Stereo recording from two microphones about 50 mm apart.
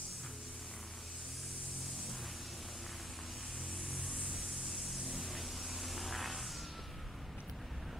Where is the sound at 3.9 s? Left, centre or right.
Centre.